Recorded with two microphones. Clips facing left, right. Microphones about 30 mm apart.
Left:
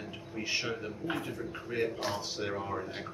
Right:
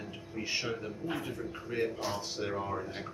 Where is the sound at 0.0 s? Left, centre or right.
Centre.